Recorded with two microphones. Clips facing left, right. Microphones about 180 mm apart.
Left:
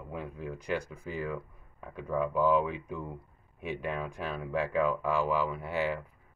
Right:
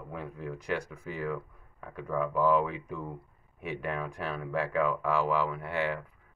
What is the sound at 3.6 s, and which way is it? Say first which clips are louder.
Speech: even; centre (ahead or behind).